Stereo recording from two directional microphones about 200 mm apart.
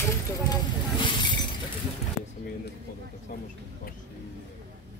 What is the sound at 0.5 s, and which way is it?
Vehicle, 25° left (ahead or behind).